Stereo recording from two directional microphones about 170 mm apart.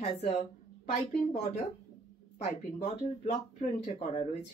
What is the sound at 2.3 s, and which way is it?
Speech, 40° left (ahead or behind).